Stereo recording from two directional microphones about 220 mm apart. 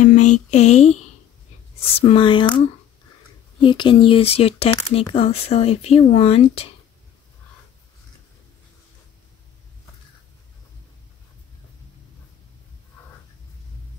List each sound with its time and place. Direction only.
0.0 s a sound: 35° left (ahead or behind)
2.0 s speech: 25° left (ahead or behind)
3.6 s speech: 20° left (ahead or behind)